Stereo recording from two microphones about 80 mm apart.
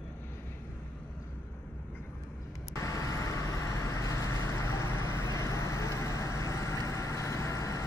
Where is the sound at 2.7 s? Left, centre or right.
Left.